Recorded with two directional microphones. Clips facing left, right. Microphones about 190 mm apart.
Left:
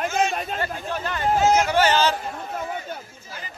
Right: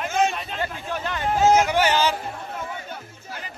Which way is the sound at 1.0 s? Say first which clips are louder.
Even; 15° right (ahead or behind).